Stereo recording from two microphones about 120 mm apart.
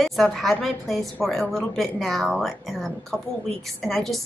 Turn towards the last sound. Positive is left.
turn(degrees=0)  # may be behind; listen again after turning